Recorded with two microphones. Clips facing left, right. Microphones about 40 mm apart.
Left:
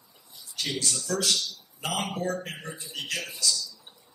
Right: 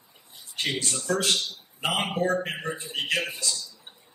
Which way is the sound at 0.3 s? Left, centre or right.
Right.